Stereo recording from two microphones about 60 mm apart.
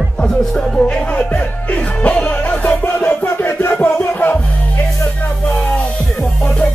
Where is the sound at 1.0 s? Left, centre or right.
Left.